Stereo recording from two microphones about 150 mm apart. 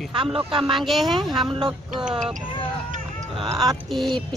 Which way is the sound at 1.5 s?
30° right (ahead or behind).